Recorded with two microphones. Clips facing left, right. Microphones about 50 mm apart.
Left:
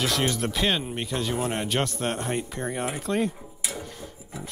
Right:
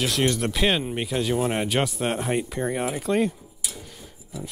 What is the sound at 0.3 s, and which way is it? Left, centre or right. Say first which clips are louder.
Speech: right 2 dB; centre.